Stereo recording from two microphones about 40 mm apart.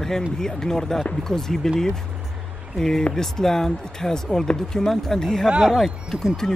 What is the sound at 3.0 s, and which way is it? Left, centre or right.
Speech, centre.